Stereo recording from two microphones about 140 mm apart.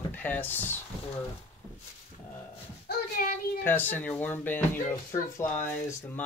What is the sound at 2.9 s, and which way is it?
Child singing, 80° left.